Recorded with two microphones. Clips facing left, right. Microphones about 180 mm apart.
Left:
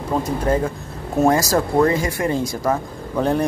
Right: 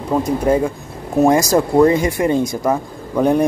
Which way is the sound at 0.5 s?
15° right (ahead or behind).